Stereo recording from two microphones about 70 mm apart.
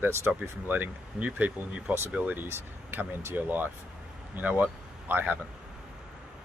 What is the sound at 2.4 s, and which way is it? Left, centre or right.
Speech, right.